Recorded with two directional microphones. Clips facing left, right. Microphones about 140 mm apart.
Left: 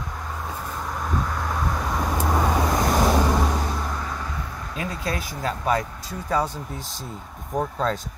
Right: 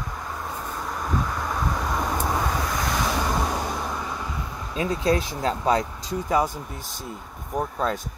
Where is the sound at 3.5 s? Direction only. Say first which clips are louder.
Left 1 dB; 5° right (ahead or behind).